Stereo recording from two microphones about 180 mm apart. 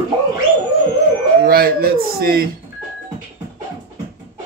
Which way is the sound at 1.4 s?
55° right (ahead or behind).